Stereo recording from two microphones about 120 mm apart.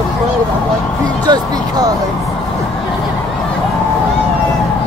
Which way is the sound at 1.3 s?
35° right (ahead or behind).